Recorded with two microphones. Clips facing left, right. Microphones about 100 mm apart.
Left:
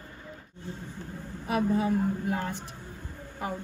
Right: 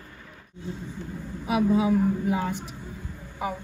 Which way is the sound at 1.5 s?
15° right (ahead or behind).